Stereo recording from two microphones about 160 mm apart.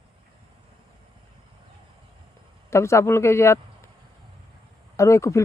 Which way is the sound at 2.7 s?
15° left (ahead or behind).